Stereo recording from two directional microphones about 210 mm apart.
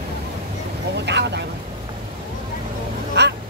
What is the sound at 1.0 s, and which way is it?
Vehicle, 55° right (ahead or behind).